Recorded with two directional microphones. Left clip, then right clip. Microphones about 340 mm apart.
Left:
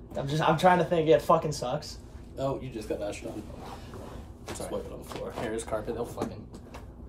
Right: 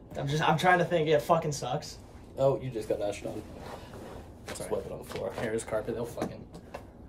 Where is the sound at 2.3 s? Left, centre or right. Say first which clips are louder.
Right 5 dB; centre.